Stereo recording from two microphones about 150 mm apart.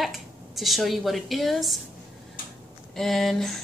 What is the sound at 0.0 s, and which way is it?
A woman's voice, centre (ahead or behind).